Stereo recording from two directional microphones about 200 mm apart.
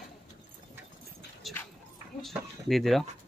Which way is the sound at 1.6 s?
10° left (ahead or behind).